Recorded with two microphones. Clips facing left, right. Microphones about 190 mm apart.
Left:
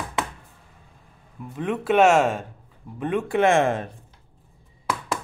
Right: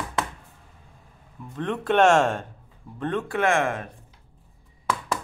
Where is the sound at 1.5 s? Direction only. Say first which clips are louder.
Left 2 dB; 5° left (ahead or behind).